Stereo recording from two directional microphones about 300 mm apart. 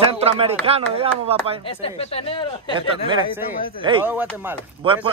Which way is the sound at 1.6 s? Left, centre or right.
Centre.